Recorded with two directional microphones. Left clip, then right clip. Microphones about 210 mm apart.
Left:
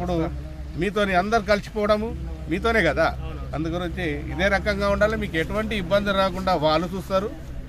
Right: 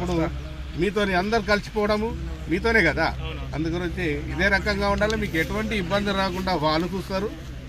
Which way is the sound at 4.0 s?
25° left (ahead or behind).